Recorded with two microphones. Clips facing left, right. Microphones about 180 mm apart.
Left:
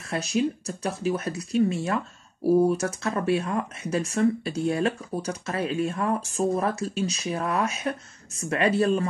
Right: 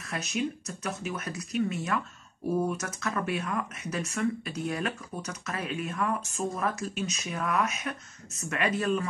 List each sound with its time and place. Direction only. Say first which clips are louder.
0.1 s speech: left 6 dB; 30° left (ahead or behind)